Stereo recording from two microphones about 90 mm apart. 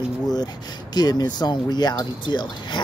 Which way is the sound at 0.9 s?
50° left (ahead or behind).